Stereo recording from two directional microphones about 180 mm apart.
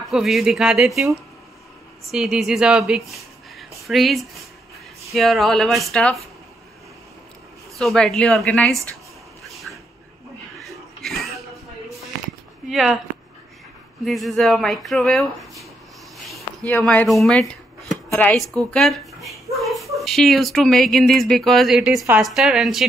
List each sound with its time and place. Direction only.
0.1 s speech: centre (ahead or behind)
2.0 s speech: centre (ahead or behind)
3.5 s a sound: centre (ahead or behind)
5.1 s speech: centre (ahead or behind)
7.7 s speech: centre (ahead or behind)
10.6 s a sound: centre (ahead or behind)
12.6 s speech: centre (ahead or behind)
14.0 s speech: centre (ahead or behind)
16.2 s a sound: centre (ahead or behind)
16.7 s speech: 5° left (ahead or behind)